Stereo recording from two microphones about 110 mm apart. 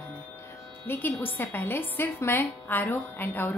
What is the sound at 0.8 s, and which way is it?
A woman's voice, 20° left (ahead or behind).